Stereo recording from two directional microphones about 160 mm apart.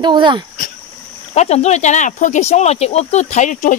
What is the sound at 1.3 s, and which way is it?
Speech, 45° left (ahead or behind).